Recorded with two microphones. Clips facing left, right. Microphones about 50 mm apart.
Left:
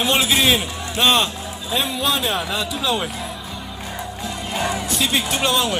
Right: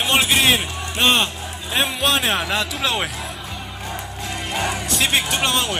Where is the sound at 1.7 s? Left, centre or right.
Right.